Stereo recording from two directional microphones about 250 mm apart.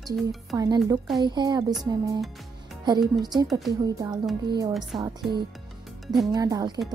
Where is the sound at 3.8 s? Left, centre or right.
Centre.